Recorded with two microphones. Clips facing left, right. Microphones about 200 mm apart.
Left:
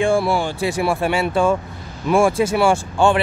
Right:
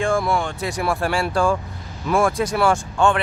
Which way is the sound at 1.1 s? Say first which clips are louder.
Left 2 dB; 5° left (ahead or behind).